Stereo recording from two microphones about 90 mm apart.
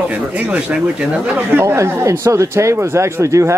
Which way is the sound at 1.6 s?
35° right (ahead or behind).